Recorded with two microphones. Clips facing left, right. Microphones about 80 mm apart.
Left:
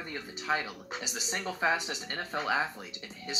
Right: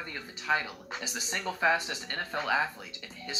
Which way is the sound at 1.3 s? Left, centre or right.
Left.